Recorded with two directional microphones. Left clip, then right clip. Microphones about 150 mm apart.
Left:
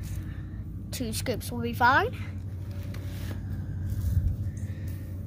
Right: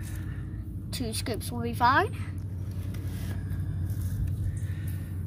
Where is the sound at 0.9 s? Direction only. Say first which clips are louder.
Left 1 dB; 35° left (ahead or behind).